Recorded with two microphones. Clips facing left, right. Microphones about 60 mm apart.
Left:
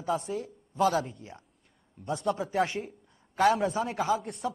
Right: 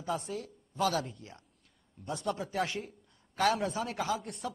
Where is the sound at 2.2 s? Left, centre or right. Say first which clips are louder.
Left 5 dB; centre.